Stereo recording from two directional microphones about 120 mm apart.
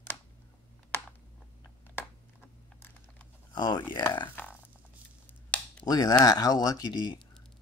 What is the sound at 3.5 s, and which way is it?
Speech, 40° left (ahead or behind).